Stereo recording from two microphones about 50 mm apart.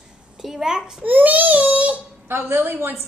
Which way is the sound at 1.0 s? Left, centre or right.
Right.